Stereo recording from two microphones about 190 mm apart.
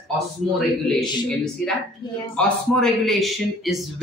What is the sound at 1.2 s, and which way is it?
Speech, 5° left (ahead or behind).